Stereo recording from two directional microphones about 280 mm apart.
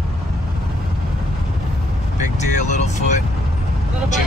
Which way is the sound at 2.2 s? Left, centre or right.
Left.